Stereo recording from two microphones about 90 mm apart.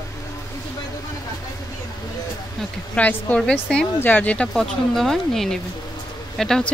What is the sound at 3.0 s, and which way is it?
Speech, 15° left (ahead or behind).